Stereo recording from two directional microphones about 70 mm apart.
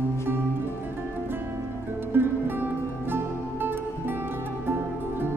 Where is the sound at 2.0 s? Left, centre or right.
Right.